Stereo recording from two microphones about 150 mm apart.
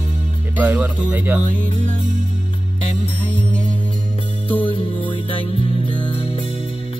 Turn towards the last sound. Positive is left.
turn(degrees=35)  # may be behind; listen again after turning